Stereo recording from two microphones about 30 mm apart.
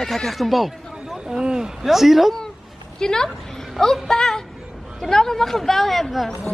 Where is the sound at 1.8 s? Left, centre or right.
Centre.